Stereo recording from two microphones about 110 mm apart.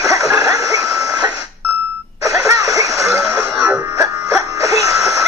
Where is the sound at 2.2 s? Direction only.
30° right (ahead or behind).